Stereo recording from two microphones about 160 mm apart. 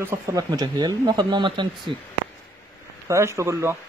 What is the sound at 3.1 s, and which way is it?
Speech, 20° right (ahead or behind).